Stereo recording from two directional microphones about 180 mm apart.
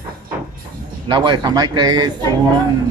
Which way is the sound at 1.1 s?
25° right (ahead or behind).